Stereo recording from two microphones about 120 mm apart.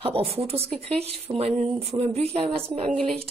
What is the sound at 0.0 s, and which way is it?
Speech, 50° right (ahead or behind).